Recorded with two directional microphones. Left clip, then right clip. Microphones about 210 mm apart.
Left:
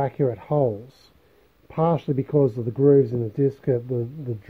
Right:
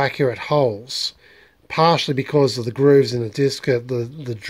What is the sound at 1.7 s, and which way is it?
Speech, 5° right (ahead or behind).